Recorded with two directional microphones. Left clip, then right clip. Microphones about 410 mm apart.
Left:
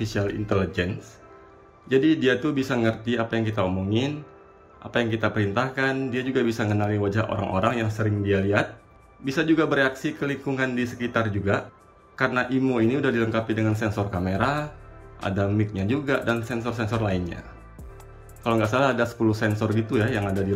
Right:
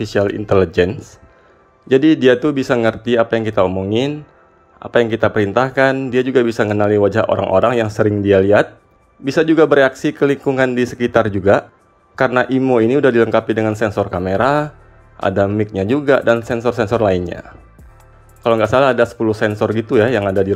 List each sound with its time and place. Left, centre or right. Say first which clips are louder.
0.0 s speech: right 11 dB; centre